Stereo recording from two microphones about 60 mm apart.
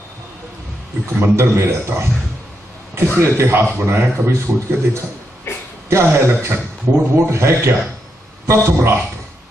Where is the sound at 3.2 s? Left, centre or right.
Right.